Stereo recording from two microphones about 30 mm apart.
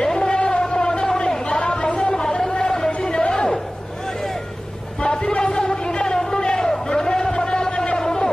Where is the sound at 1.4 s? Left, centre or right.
Left.